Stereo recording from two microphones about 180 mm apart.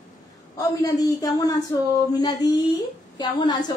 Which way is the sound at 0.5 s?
20° left (ahead or behind).